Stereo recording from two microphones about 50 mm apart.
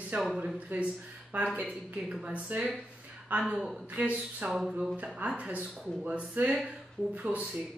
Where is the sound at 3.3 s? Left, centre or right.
Right.